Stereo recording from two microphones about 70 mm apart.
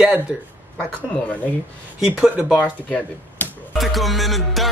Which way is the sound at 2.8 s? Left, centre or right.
Centre.